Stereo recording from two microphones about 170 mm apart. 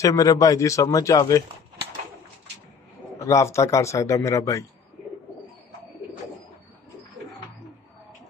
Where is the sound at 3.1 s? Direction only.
15° left (ahead or behind).